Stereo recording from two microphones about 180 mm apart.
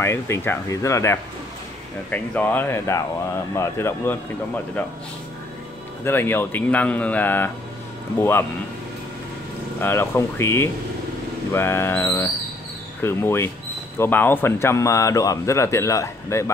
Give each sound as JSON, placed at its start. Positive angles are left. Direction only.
{"t": 0.0, "sound": "speech", "side_deg": 15}
{"t": 6.0, "sound": "speech", "side_deg": 10}
{"t": 9.8, "sound": "speech", "side_deg": 15}